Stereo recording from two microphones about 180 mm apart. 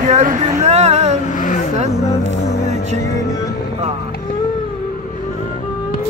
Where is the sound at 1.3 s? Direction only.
50° left (ahead or behind).